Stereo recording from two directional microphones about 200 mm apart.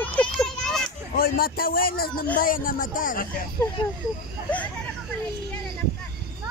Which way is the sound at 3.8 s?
25° left (ahead or behind).